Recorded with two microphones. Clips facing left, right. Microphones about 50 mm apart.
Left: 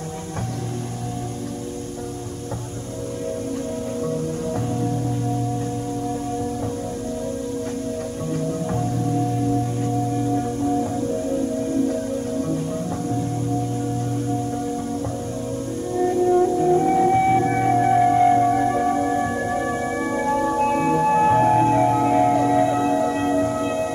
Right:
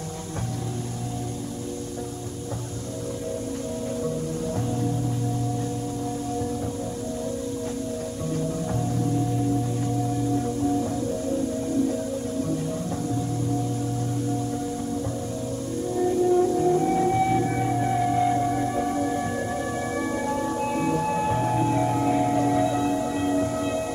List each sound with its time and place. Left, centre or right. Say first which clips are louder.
16.8 s music: left 5 dB; left
22.5 s singing bowl: left 4 dB; left
22.9 s singing bowl: left 4 dB; left